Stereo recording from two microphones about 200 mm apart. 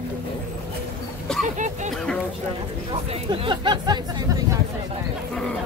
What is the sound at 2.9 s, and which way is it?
Speech, 25° right (ahead or behind).